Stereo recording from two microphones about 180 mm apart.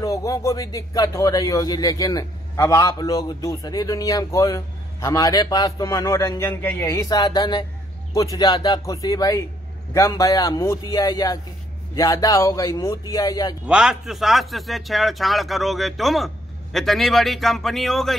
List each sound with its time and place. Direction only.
0.0 s speech: 15° left (ahead or behind)
13.7 s a man's voice: 5° right (ahead or behind)